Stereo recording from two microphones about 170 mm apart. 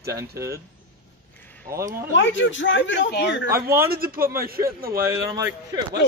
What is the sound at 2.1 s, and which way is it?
Speech, 90° left.